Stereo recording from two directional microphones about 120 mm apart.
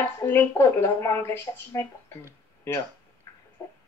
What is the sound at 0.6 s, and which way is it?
A woman's voice, 25° left (ahead or behind).